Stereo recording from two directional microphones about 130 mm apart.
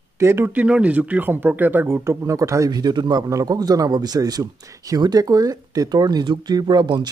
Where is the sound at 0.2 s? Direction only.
20° right (ahead or behind).